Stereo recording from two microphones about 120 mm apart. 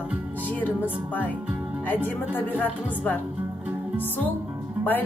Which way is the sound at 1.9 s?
15° left (ahead or behind).